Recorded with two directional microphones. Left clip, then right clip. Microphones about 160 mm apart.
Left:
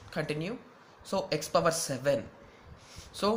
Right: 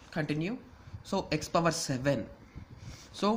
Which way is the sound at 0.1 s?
35° right (ahead or behind).